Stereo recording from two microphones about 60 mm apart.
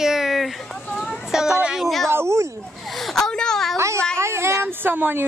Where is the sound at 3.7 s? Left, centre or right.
Right.